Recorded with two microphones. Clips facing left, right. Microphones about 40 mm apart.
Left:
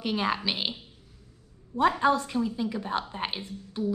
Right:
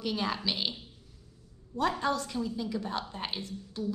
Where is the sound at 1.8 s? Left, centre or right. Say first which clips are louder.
Left 6 dB; left.